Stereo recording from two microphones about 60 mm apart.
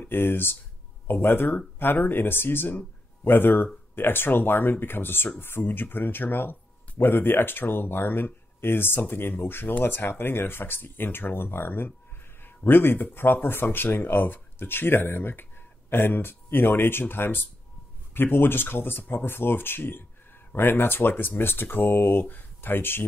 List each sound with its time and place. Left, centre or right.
0.0 s speech: left